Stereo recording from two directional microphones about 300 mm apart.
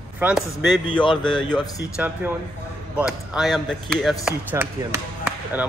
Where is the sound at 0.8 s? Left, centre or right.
Centre.